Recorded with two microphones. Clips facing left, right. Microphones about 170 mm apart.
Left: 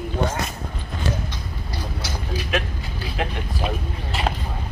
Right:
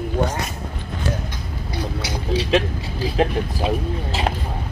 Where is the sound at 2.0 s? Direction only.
80° right.